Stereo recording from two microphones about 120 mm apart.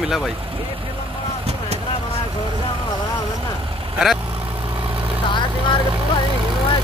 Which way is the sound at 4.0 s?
5° right (ahead or behind).